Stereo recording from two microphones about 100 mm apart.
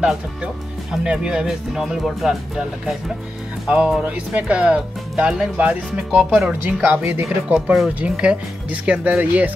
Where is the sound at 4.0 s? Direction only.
10° right (ahead or behind).